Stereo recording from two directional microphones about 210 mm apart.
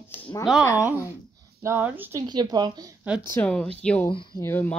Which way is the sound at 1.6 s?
10° right (ahead or behind).